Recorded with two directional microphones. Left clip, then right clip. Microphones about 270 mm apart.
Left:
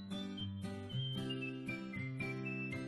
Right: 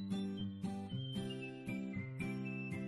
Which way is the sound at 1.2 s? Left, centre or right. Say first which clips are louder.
Left 3 dB; centre.